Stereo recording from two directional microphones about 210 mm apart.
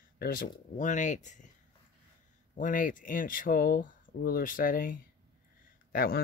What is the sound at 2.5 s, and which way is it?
Speech, 40° left (ahead or behind).